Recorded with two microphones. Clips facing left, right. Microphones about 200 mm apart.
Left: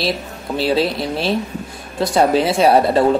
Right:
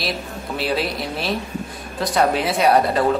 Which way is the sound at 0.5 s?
30° left (ahead or behind).